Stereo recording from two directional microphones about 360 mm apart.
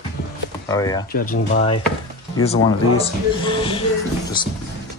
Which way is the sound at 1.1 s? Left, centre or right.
Left.